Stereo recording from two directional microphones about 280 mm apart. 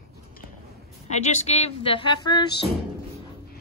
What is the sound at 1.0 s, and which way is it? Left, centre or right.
Speech, left.